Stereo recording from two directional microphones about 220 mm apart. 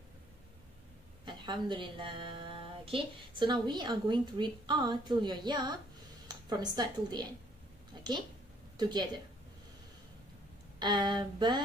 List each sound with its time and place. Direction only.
1.2 s speech: 20° right (ahead or behind)
7.9 s a sound: 20° right (ahead or behind)
8.7 s a woman's voice: 20° right (ahead or behind)
10.8 s speech: 20° right (ahead or behind)